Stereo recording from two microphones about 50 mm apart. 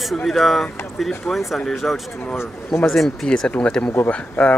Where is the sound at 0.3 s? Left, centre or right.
Centre.